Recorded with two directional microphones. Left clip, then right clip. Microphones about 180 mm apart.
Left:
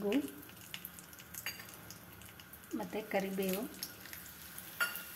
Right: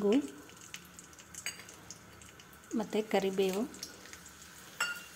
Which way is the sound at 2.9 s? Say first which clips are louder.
Right 6 dB; 50° right (ahead or behind).